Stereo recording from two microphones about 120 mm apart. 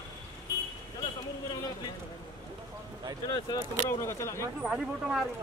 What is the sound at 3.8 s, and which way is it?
Speech, 25° left (ahead or behind).